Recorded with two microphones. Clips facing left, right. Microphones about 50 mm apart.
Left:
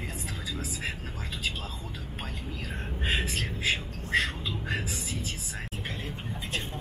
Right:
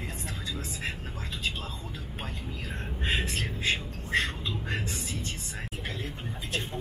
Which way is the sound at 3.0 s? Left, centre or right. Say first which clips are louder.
Even; centre.